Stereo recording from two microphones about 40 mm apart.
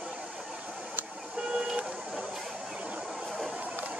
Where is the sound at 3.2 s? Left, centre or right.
Centre.